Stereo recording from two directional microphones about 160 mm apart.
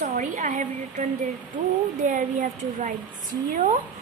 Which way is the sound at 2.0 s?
50° right (ahead or behind).